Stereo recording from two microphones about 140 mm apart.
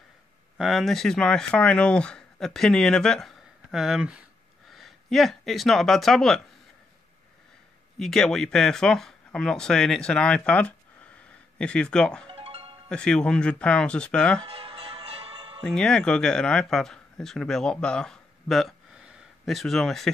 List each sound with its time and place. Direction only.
0.6 s speech: centre (ahead or behind)
8.0 s speech: 5° left (ahead or behind)
12.3 s music: 45° right (ahead or behind)
12.9 s speech: 5° left (ahead or behind)
14.4 s music: 40° right (ahead or behind)
15.6 s speech: 5° left (ahead or behind)